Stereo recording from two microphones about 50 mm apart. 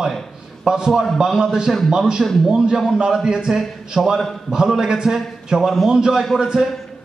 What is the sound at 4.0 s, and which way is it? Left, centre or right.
Speech, centre.